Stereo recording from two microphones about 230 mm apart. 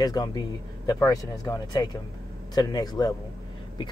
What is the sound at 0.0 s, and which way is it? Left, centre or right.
Speech, centre.